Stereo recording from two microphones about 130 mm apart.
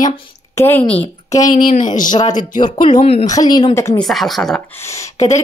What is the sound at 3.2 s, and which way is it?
Speech, 30° left (ahead or behind).